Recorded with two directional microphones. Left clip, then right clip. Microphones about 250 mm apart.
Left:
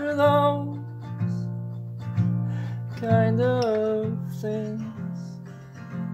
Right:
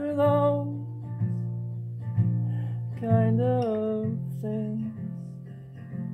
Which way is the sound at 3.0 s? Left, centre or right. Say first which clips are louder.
Left 4 dB; centre.